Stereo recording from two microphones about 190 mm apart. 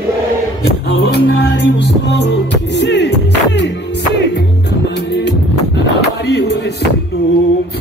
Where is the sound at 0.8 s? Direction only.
60° left (ahead or behind).